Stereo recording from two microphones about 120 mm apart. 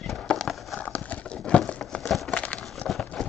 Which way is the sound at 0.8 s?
15° left (ahead or behind).